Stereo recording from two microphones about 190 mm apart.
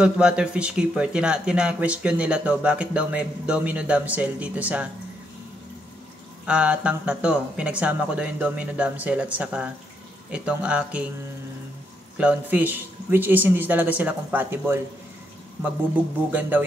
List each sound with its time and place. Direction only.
0.0 s speech: 5° right (ahead or behind)
6.4 s speech: 5° right (ahead or behind)
12.2 s a man's voice: 5° right (ahead or behind)
16.3 s a man's voice: 10° right (ahead or behind)